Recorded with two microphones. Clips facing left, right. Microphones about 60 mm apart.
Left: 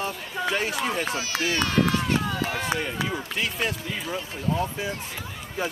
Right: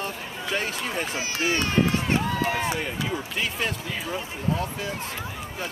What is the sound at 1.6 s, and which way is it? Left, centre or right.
Run, right.